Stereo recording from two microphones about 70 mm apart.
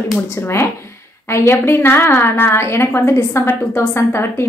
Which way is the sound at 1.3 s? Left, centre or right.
Left.